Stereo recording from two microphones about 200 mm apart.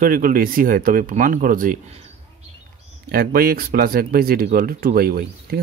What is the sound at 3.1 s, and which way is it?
Speech, 50° right (ahead or behind).